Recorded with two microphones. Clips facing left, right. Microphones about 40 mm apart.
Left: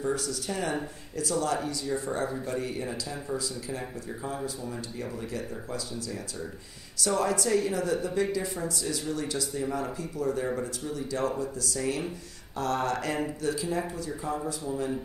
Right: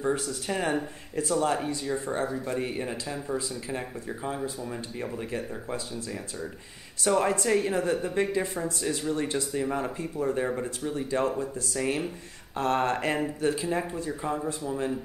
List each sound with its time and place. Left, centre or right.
0.0 s a woman's voice: right
7.0 s a woman's voice: right